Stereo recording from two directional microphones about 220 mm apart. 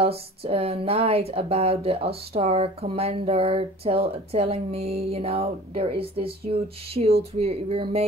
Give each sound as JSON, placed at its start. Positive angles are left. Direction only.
{"t": 0.0, "sound": "speech", "side_deg": -25}